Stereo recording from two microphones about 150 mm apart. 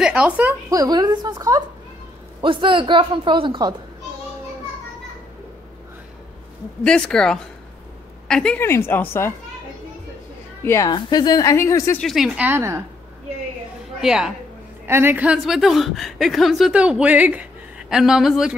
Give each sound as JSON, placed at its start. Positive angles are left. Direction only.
{"t": 0.0, "sound": "a woman's voice", "side_deg": -10}
{"t": 0.7, "sound": "a woman's voice", "side_deg": -25}
{"t": 6.8, "sound": "a woman's voice", "side_deg": 5}
{"t": 10.6, "sound": "a woman's voice", "side_deg": 20}
{"t": 12.0, "sound": "a woman's voice", "side_deg": 0}
{"t": 12.4, "sound": "a woman's voice", "side_deg": -15}
{"t": 14.0, "sound": "a woman's voice", "side_deg": -5}
{"t": 14.9, "sound": "a woman's voice", "side_deg": -15}